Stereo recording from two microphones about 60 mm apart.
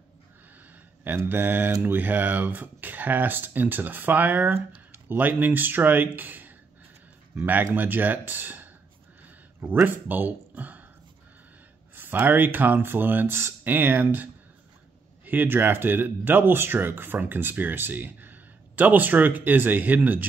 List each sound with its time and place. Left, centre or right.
1.0 s speech: right
9.8 s speech: right
11.9 s a sound: right
12.3 s speech: right